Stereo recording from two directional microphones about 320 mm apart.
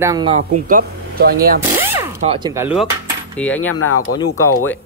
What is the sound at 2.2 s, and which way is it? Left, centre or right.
Speech, centre.